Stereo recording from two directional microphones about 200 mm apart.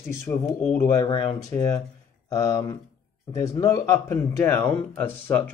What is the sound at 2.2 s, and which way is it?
Speech, 20° left (ahead or behind).